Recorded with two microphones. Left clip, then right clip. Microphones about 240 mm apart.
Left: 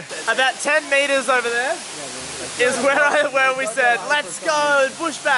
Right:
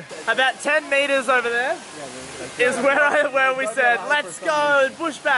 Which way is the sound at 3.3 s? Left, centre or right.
Centre.